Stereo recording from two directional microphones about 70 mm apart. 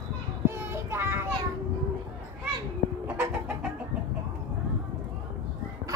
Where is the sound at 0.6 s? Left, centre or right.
Right.